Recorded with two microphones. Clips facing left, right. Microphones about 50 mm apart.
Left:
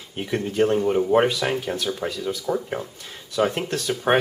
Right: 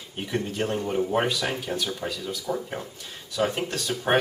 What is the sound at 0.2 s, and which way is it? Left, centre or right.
A man's voice, centre.